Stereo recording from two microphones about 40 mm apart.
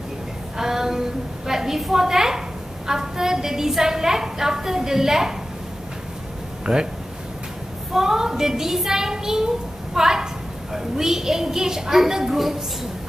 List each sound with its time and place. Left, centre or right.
0.6 s a sound: centre
2.9 s a woman's voice: centre
6.6 s speech: centre
7.9 s a woman's voice: centre